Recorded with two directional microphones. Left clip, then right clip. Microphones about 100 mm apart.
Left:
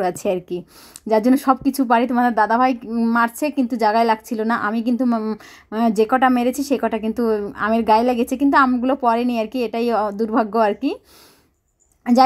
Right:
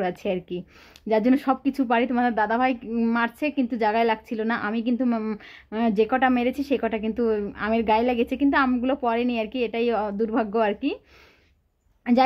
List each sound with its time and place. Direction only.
0.0 s speech: 40° left (ahead or behind)
2.9 s speech: 20° left (ahead or behind)
3.3 s speech: 35° left (ahead or behind)
5.0 s speech: 20° left (ahead or behind)
5.4 s speech: 30° left (ahead or behind)